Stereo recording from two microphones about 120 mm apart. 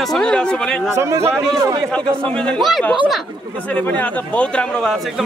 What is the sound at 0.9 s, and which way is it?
Speech, 25° right (ahead or behind).